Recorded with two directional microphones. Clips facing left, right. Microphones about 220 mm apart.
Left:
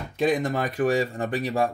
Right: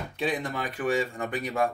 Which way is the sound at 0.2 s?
45° left (ahead or behind).